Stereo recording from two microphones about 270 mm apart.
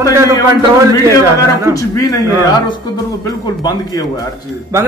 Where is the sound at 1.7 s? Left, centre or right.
Centre.